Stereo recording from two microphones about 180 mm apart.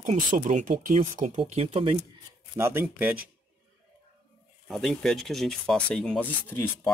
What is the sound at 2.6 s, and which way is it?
Speech, 15° right (ahead or behind).